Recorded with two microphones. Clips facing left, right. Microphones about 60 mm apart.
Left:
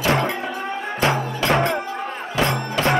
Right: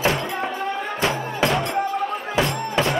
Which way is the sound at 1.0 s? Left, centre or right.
Left.